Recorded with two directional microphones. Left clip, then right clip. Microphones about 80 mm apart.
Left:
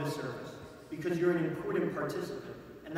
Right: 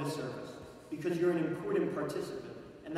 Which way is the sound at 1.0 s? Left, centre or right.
Right.